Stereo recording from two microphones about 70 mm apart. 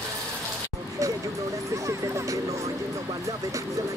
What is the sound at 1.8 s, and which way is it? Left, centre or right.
Speech, right.